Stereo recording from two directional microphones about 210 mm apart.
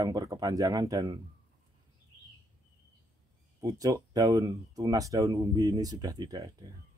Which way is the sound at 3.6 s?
15° right (ahead or behind).